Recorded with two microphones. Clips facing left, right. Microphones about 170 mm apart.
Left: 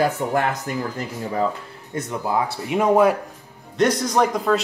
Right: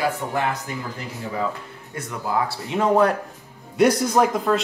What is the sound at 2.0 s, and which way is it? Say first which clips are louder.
Speech: left 2 dB; 20° left (ahead or behind).